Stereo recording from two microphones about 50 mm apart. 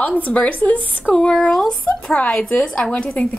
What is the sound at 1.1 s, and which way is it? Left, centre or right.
Speech, centre.